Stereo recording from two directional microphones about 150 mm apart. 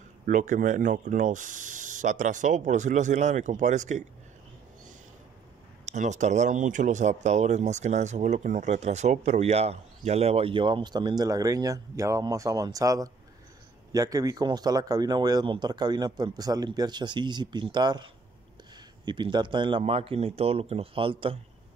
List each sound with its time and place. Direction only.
0.3 s speech: 60° right (ahead or behind)
5.9 s a man's voice: 55° right (ahead or behind); by 21.4 s 35° right (ahead or behind)